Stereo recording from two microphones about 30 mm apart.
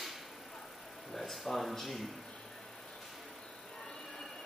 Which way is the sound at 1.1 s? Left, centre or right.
Centre.